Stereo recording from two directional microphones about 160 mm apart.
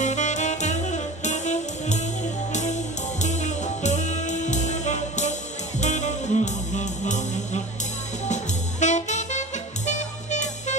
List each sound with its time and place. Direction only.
0.0 s music: 50° left (ahead or behind)
8.3 s jazz: 45° left (ahead or behind)
9.8 s music: 50° left (ahead or behind)